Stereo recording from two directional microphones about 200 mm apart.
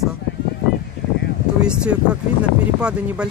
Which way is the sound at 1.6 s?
5° right (ahead or behind).